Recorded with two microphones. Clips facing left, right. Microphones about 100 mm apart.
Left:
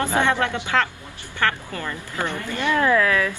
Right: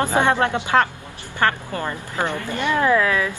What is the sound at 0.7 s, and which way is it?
A woman's voice, 35° right (ahead or behind).